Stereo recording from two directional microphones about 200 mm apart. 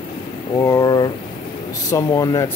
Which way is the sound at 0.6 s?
15° left (ahead or behind).